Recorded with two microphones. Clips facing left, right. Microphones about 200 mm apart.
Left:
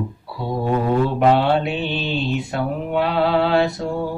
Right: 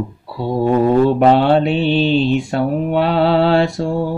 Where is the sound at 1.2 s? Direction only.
35° right (ahead or behind).